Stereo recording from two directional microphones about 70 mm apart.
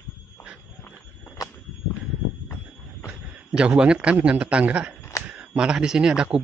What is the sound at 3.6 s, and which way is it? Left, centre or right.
Speech, centre.